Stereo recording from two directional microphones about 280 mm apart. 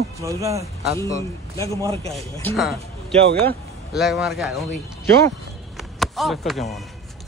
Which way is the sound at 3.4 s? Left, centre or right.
Centre.